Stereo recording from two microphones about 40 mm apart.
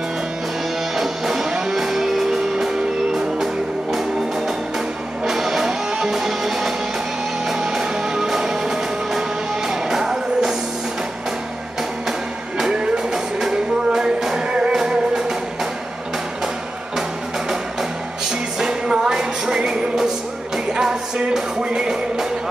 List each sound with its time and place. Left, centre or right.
0.9 s music: centre
5.2 s music: centre
13.1 s music: centre
18.6 s music: centre